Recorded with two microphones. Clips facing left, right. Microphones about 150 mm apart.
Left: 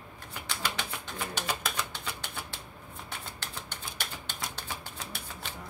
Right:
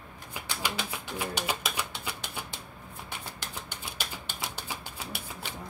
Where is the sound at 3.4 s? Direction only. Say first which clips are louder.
Right 1 dB; 10° right (ahead or behind).